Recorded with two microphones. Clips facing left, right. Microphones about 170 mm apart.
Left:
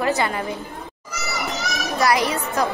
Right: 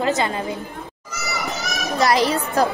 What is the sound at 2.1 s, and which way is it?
Speech, 30° right (ahead or behind).